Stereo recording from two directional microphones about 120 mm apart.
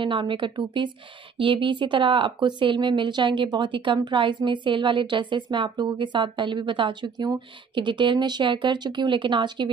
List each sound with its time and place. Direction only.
0.0 s speech: 45° right (ahead or behind)